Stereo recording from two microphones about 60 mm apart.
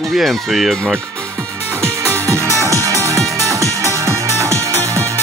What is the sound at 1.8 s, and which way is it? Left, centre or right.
Music, right.